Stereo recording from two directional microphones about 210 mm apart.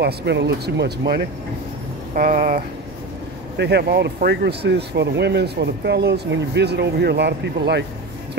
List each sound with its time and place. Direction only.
0.0 s speech: 55° right (ahead or behind)
3.5 s speech: 55° right (ahead or behind)